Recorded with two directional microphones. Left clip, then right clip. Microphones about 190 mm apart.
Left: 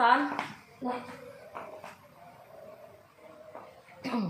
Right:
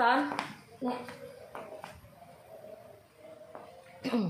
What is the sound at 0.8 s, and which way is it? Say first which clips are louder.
Speech: left 1 dB; 35° right (ahead or behind).